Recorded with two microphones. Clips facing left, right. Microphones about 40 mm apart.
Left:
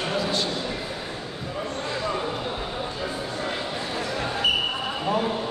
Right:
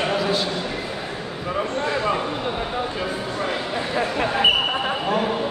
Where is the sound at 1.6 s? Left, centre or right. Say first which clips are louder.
Right 6 dB; right.